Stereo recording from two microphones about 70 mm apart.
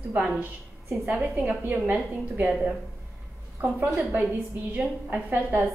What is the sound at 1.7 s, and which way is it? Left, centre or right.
Speech, right.